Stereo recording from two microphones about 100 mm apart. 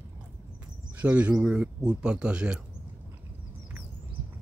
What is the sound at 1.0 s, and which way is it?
Speech, 15° right (ahead or behind).